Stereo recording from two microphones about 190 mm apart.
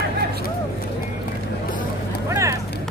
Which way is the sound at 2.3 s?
15° right (ahead or behind).